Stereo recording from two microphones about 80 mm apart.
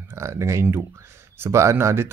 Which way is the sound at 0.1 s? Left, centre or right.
Right.